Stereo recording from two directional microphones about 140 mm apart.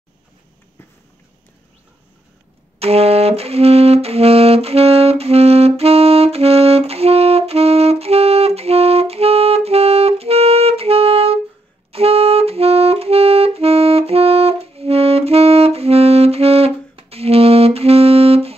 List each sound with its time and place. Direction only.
2.8 s music: 45° right (ahead or behind)
11.9 s clarinet: 45° right (ahead or behind)